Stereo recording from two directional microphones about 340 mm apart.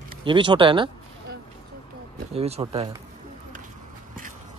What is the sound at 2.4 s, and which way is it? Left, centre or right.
Speech, centre.